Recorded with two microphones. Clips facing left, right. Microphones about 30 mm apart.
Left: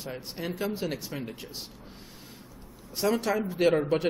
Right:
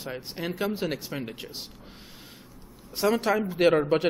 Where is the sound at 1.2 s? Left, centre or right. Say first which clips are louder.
Right 2 dB; right.